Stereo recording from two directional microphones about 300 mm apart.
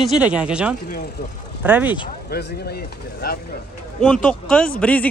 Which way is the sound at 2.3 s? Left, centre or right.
Left.